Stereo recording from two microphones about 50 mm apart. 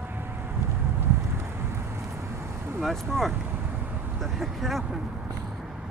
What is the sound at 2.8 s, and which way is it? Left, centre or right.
Speech, centre.